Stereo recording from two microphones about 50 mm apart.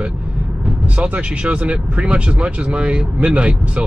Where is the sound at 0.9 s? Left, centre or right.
Right.